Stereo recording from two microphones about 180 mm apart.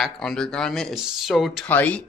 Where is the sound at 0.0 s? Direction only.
5° left (ahead or behind).